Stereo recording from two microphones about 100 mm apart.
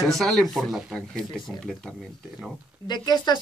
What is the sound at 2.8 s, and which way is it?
Speech, 45° left (ahead or behind).